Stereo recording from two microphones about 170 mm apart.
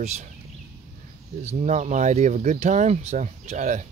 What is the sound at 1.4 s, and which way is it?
Speech, 40° right (ahead or behind).